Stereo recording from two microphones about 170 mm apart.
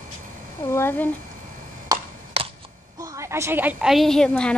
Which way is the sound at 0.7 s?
15° left (ahead or behind).